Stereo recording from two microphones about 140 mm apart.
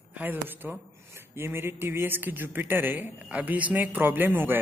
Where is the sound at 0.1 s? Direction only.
15° right (ahead or behind).